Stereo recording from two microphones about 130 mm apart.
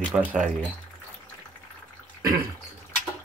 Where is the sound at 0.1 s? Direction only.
10° right (ahead or behind).